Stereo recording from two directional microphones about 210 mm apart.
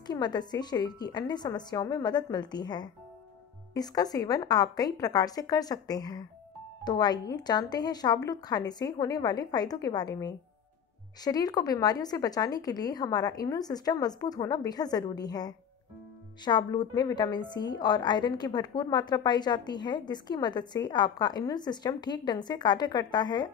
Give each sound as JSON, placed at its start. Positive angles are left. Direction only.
{"t": 0.0, "sound": "a woman's voice", "side_deg": 20}